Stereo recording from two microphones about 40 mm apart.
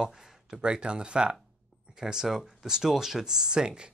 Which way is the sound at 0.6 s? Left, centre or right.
Right.